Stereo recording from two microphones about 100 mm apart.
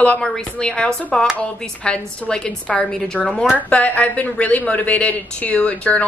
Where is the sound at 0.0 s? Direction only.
10° left (ahead or behind).